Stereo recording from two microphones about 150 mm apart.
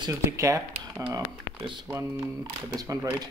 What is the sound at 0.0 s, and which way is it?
Speech, 20° right (ahead or behind).